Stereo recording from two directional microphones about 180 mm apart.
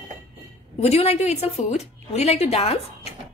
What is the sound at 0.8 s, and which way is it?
A woman's voice, 35° left (ahead or behind).